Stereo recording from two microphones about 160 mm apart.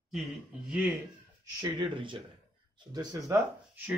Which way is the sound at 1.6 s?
30° right (ahead or behind).